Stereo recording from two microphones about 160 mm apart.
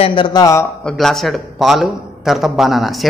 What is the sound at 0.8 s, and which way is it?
A man's voice, 5° left (ahead or behind).